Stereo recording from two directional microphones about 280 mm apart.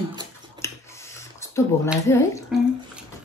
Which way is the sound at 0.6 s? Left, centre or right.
Centre.